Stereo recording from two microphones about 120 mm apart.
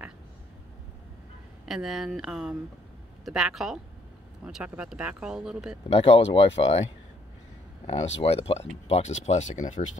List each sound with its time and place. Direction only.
1.7 s speech: centre (ahead or behind)
5.9 s speech: 55° left (ahead or behind); by 9.8 s 90° left